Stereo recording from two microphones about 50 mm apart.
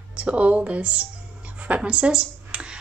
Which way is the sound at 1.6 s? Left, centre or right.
Right.